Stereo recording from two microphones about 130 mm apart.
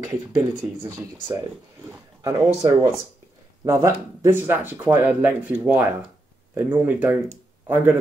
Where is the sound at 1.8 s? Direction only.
25° right (ahead or behind).